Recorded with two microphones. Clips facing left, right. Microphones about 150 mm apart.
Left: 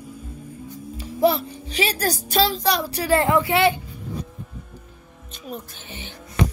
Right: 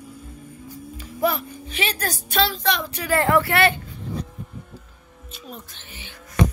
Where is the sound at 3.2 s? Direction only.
20° left (ahead or behind).